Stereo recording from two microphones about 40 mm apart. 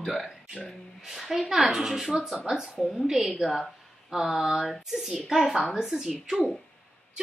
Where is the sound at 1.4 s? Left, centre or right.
Centre.